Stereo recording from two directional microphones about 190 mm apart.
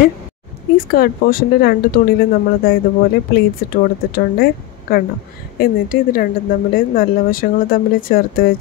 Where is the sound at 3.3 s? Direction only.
55° left (ahead or behind).